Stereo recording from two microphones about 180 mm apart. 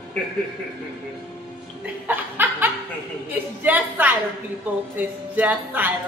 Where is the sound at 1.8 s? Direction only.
10° right (ahead or behind).